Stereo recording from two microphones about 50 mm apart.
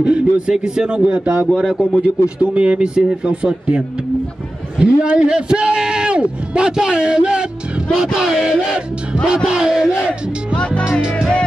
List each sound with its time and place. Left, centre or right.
0.0 s a man's voice: centre
1.5 s speech: centre
2.0 s a man's voice: right